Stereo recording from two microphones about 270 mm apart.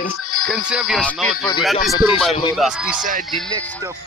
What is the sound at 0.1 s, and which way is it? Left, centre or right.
Music, left.